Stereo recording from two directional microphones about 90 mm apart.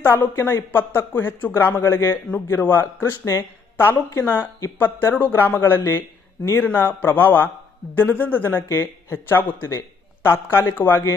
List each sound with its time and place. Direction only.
0.0 s a man's voice: 25° left (ahead or behind)